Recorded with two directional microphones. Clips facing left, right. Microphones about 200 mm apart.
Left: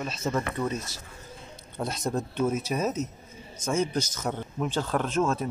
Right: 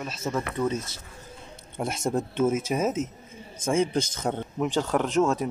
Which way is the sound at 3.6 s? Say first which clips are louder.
Right 3 dB; 30° right (ahead or behind).